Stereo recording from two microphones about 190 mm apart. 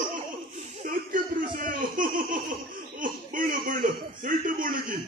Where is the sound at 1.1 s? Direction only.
45° right (ahead or behind).